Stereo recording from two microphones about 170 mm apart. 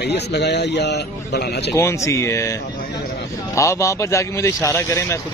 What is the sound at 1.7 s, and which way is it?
Speech, 15° left (ahead or behind).